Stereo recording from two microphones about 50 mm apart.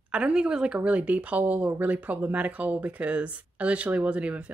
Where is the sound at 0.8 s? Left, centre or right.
Right.